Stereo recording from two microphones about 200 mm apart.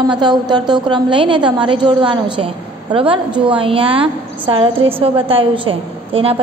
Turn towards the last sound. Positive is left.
turn(degrees=-30)  # may be behind; listen again after turning